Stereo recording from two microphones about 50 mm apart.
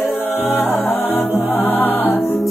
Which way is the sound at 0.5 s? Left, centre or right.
Left.